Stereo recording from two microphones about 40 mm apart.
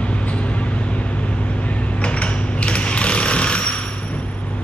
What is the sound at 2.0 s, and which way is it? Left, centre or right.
Telephone bell ringing, left.